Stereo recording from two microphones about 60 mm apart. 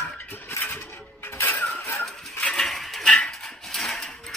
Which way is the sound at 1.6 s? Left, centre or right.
Left.